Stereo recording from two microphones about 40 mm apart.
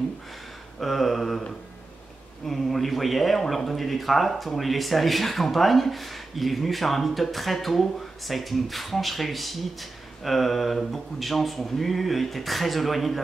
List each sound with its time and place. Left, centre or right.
0.7 s speech: centre
2.4 s speech: centre